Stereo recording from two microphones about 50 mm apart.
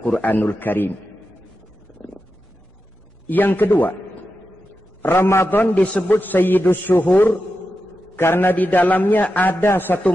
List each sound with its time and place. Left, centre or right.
0.2 s a man's voice: left
3.3 s a man's voice: left
5.0 s a man's voice: left
5.5 s a man's voice: left
8.2 s a man's voice: left
8.5 s a man's voice: left